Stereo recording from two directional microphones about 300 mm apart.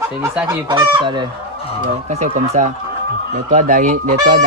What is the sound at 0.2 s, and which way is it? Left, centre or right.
Speech, centre.